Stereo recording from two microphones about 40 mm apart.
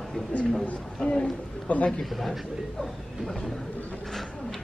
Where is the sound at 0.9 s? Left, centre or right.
Centre.